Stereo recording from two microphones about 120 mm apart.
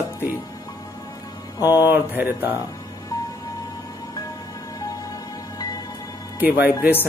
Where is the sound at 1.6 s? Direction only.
15° right (ahead or behind).